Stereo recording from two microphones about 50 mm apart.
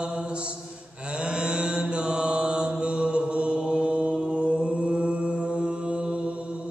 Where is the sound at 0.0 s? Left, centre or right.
Centre.